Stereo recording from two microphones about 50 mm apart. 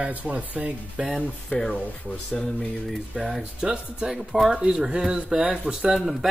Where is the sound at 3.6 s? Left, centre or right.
Centre.